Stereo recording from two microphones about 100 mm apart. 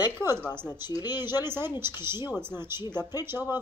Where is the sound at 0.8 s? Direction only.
45° left (ahead or behind).